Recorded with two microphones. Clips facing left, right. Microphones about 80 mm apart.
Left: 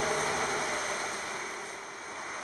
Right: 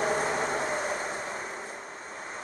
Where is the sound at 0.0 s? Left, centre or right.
Right.